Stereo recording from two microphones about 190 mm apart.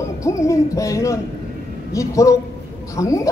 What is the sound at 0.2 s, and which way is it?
A man's voice, 15° left (ahead or behind).